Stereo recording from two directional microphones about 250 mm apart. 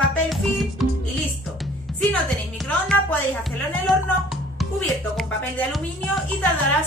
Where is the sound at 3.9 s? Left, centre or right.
Centre.